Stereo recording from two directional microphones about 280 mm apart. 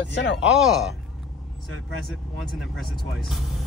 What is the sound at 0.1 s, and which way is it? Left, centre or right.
Speech, left.